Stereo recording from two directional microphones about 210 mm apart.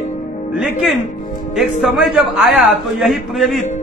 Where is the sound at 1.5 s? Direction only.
Centre (ahead or behind).